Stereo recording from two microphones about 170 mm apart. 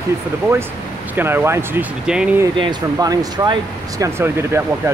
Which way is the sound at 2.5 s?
25° right (ahead or behind).